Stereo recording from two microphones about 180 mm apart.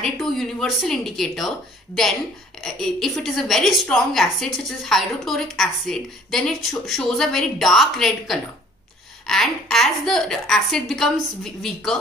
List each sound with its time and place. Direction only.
0.0 s a woman's voice: centre (ahead or behind)
2.6 s a woman's voice: centre (ahead or behind)